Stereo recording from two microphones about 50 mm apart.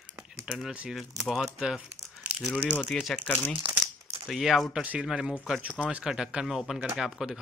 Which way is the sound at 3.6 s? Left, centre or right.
Right.